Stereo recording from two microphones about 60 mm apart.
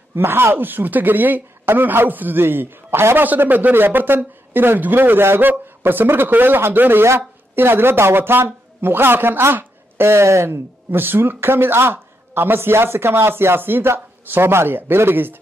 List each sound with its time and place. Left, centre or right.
0.1 s speech: right